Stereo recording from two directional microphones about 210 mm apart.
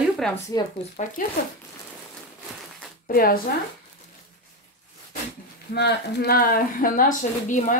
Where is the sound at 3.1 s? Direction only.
45° left (ahead or behind).